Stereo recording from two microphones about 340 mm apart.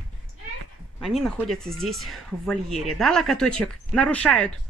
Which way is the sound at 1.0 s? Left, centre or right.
Centre.